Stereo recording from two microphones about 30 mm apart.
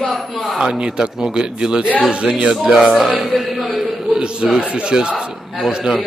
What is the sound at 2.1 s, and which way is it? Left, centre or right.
Speech, right.